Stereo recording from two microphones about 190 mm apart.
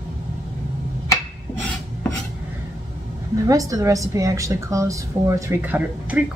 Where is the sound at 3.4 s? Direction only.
20° right (ahead or behind).